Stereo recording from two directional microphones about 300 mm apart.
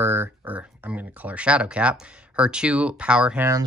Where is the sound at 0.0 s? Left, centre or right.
Centre.